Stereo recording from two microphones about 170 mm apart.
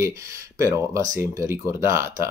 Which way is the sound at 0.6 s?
20° right (ahead or behind).